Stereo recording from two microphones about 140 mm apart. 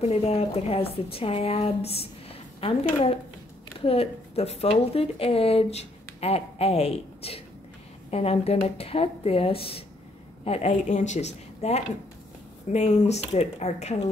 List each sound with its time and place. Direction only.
0.0 s a woman's voice: 45° left (ahead or behind)